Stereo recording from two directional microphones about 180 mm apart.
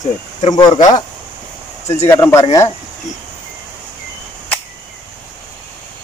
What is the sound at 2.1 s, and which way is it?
Speech, 15° left (ahead or behind).